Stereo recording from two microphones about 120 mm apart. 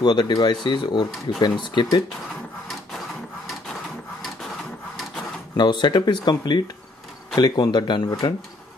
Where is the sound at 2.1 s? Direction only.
5° left (ahead or behind).